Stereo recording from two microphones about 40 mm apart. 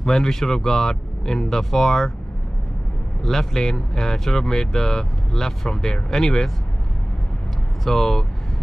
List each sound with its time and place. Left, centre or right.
0.0 s speech: centre
3.2 s speech: centre
7.8 s speech: centre